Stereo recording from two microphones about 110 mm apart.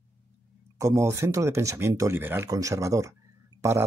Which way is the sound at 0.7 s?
25° right (ahead or behind).